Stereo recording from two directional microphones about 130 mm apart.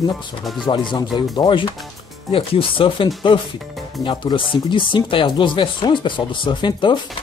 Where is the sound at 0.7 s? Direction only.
35° left (ahead or behind).